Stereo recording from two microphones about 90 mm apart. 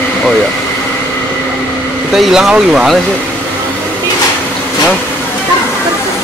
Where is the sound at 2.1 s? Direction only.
5° right (ahead or behind).